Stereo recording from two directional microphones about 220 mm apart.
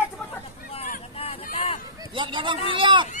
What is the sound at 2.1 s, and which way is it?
Speech, 20° right (ahead or behind).